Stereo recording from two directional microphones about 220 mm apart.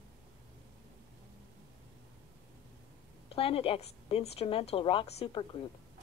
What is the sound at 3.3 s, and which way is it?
Speech, 25° left (ahead or behind).